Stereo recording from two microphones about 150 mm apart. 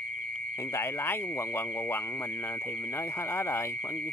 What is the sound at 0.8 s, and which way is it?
Speech, 15° left (ahead or behind).